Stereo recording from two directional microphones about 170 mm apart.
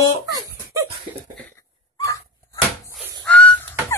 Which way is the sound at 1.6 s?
20° left (ahead or behind).